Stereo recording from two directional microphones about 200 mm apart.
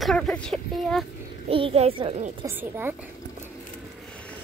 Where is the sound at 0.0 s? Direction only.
5° left (ahead or behind).